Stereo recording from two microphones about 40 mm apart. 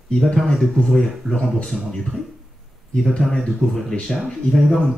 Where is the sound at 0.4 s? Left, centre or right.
Centre.